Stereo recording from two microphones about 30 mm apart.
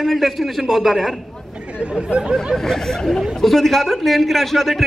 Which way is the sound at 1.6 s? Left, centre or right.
Right.